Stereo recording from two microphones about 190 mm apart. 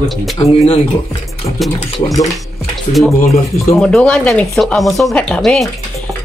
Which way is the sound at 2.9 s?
35° left (ahead or behind).